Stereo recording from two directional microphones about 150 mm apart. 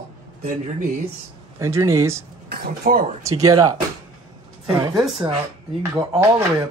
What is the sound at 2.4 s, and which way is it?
Speech, 90° right.